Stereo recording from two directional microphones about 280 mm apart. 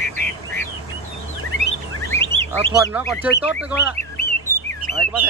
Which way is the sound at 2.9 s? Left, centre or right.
Centre.